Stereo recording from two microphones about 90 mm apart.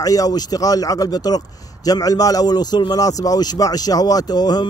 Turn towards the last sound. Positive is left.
turn(degrees=50)  # may be behind; listen again after turning